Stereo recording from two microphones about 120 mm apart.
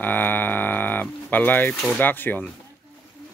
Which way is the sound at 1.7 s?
5° left (ahead or behind).